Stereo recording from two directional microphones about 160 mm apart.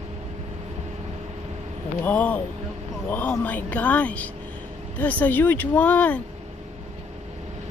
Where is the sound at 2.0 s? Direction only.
10° left (ahead or behind).